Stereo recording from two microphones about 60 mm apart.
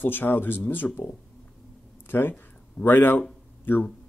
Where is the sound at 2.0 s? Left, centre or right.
Left.